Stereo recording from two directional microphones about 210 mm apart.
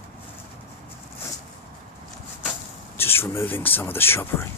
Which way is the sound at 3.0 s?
10° left (ahead or behind).